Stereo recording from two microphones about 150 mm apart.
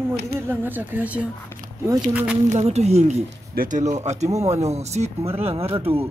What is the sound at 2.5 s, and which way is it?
Speech, 45° right (ahead or behind).